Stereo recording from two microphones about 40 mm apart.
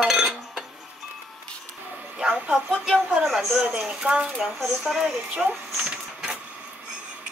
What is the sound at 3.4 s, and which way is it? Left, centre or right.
Speech, centre.